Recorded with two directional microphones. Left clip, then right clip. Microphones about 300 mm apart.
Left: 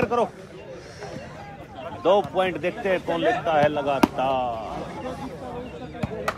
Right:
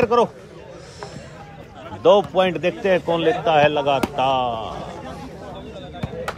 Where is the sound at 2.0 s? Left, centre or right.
Right.